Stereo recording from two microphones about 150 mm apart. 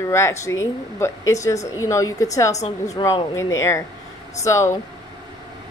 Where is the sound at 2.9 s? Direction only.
20° left (ahead or behind).